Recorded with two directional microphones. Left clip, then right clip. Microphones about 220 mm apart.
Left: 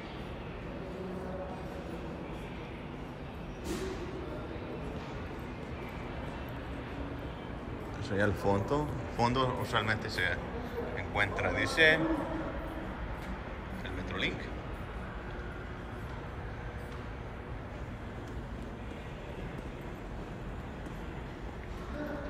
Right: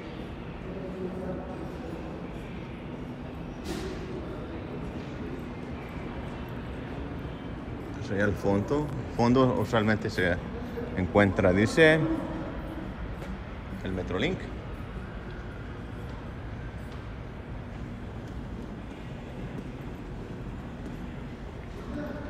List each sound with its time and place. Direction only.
8.1 s speech: 20° left (ahead or behind)
9.2 s speech: 5° left (ahead or behind); by 12.0 s 10° right (ahead or behind)
13.8 s a sound: centre (ahead or behind)